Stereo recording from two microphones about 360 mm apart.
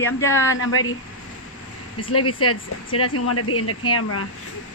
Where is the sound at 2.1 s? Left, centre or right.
Left.